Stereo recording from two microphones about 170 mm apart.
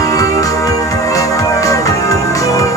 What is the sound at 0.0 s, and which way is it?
Music, 20° left (ahead or behind).